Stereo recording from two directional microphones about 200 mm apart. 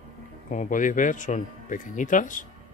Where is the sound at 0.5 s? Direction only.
40° left (ahead or behind).